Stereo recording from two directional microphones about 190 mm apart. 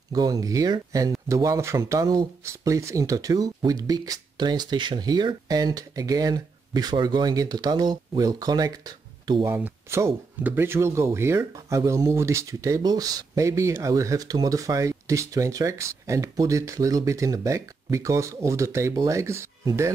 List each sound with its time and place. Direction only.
0.1 s speech: 20° right (ahead or behind)